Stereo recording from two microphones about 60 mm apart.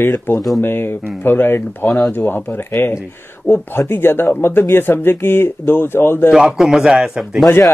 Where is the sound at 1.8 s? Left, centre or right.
Centre.